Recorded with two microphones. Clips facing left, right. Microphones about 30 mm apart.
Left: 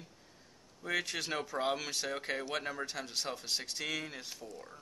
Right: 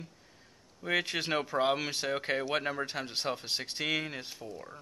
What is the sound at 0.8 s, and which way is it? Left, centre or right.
Speech, right.